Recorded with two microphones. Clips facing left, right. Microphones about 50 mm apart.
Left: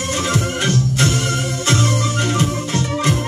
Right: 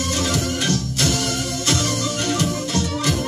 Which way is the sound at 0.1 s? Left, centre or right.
Left.